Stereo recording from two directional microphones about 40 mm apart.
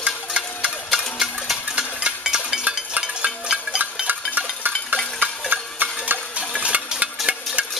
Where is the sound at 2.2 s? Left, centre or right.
Centre.